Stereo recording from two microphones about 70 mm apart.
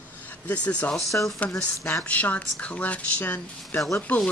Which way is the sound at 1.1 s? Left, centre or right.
Left.